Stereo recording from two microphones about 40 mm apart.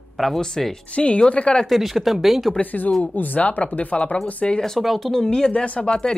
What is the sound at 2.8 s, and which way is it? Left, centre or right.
Speech, left.